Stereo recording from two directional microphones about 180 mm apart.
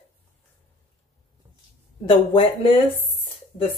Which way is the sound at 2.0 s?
30° left (ahead or behind).